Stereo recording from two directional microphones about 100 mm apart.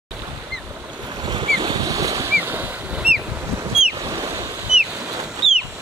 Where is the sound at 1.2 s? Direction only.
50° right (ahead or behind).